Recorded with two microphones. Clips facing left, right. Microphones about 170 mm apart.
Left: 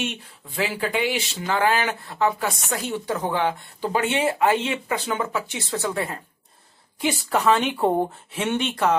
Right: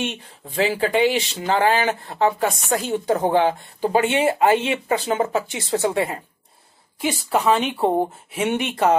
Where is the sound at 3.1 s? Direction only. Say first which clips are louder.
Right 6 dB; 50° right (ahead or behind).